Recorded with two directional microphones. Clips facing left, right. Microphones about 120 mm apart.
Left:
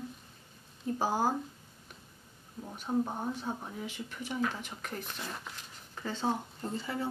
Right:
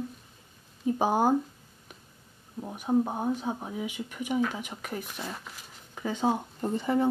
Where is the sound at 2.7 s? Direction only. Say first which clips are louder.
Right 6 dB; 15° right (ahead or behind).